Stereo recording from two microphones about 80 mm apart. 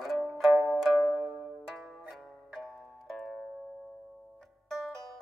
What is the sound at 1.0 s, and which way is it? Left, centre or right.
Music, centre.